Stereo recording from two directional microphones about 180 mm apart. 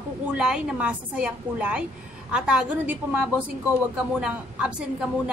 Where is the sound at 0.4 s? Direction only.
5° right (ahead or behind).